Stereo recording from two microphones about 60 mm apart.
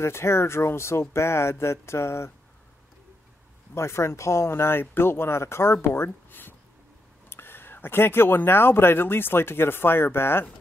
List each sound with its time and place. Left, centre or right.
0.0 s speech: left
3.7 s speech: left